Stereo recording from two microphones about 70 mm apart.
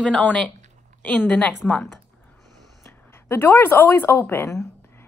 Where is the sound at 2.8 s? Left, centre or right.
Left.